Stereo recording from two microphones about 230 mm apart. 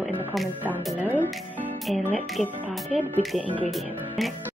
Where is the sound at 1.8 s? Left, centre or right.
Centre.